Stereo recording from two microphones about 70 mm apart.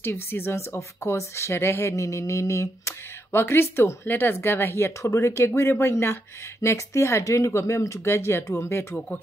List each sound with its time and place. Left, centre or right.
0.0 s speech: left